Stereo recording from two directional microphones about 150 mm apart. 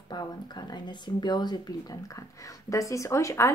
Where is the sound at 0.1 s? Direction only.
30° left (ahead or behind).